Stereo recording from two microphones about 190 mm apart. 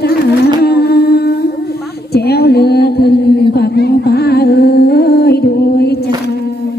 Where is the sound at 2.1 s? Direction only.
55° left (ahead or behind).